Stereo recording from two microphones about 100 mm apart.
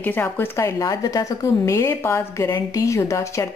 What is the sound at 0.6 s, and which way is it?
A woman's voice, 35° left (ahead or behind).